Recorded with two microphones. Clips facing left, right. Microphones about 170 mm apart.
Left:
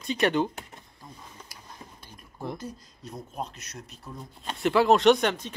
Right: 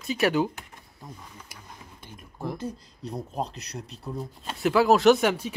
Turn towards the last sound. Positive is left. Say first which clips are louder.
# right 2 dB
turn(degrees=-10)  # may be behind; listen again after turning